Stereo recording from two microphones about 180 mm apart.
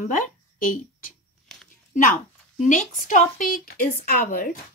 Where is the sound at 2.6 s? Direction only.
45° left (ahead or behind).